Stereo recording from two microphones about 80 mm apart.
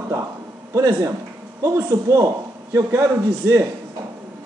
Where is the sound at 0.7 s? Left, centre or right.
Right.